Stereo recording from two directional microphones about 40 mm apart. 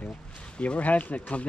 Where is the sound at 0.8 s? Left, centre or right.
Left.